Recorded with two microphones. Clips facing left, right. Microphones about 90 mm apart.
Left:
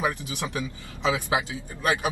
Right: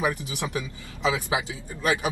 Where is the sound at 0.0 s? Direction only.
20° right (ahead or behind).